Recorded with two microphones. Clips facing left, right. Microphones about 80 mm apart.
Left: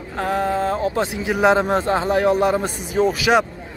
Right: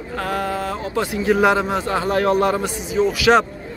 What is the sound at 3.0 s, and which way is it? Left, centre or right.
Speech, left.